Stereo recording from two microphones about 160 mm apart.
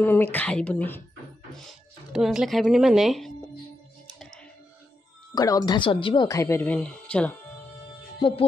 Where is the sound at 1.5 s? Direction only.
Centre (ahead or behind).